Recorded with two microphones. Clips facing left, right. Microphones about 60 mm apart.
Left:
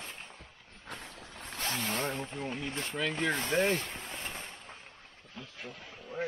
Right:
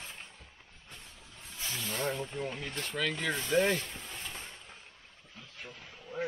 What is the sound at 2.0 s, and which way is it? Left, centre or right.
Speech, left.